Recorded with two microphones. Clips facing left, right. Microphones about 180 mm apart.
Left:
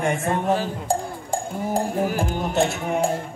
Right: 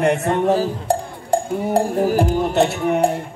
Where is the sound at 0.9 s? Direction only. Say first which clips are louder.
Right 4 dB; 65° right (ahead or behind).